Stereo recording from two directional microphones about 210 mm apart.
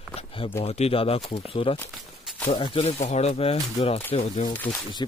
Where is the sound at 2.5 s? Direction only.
25° left (ahead or behind).